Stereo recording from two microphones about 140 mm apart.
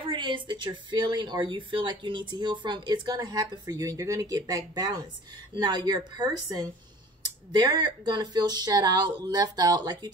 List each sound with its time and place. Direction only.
0.0 s speech: 35° right (ahead or behind)